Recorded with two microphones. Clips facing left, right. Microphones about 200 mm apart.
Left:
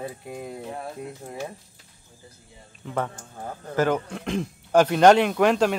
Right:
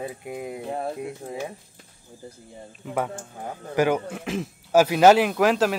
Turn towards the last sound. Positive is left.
turn(degrees=0)  # may be behind; listen again after turning